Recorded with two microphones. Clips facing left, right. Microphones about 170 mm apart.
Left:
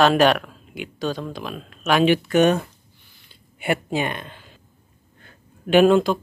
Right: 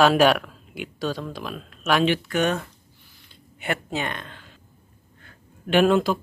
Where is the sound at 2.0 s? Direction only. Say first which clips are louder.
Left 6 dB; 15° left (ahead or behind).